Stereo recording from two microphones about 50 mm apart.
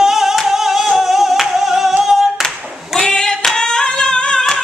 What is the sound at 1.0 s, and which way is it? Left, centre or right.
Singing, centre.